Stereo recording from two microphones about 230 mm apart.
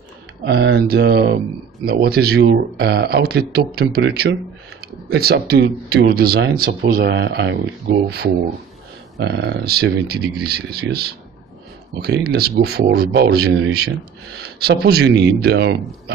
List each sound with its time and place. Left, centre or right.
0.5 s speech: right
9.2 s speech: right